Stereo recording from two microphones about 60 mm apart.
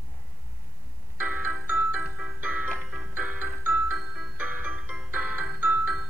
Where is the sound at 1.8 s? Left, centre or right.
Centre.